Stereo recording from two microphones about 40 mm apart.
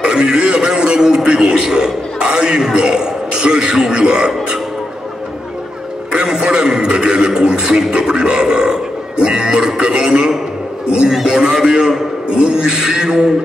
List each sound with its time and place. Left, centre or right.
0.0 s a man's voice: right
6.1 s a man's voice: centre
12.4 s a man's voice: right